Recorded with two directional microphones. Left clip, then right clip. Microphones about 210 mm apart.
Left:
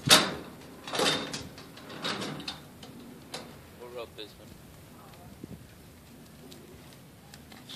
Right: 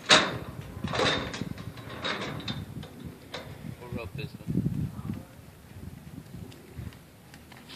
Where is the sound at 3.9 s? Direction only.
Centre (ahead or behind).